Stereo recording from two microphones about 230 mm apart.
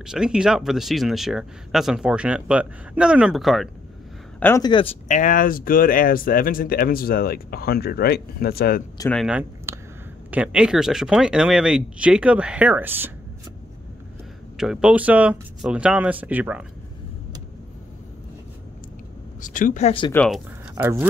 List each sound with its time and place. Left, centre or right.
0.0 s speech: centre
4.4 s speech: centre
5.0 s speech: left
9.1 s speech: centre
14.6 s speech: centre
19.4 s speech: left
20.1 s speech: centre
20.7 s speech: centre